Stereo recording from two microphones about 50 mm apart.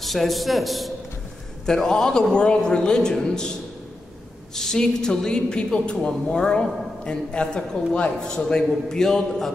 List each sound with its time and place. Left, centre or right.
0.0 s a man's voice: centre
1.7 s a woman's voice: centre
4.6 s a woman's voice: centre